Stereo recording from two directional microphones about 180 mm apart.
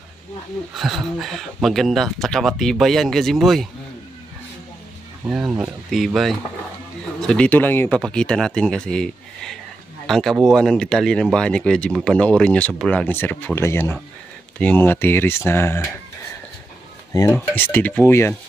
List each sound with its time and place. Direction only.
0.7 s speech: centre (ahead or behind)
5.2 s speech: 5° right (ahead or behind); by 15.9 s 10° left (ahead or behind)
17.1 s speech: 20° left (ahead or behind)